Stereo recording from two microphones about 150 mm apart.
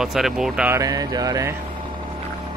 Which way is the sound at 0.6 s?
20° right (ahead or behind).